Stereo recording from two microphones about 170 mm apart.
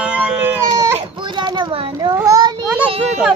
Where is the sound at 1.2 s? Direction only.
25° right (ahead or behind).